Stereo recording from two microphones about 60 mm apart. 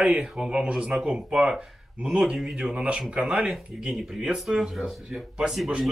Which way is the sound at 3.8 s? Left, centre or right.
Centre.